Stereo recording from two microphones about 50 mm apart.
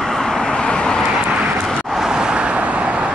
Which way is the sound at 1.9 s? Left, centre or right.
Centre.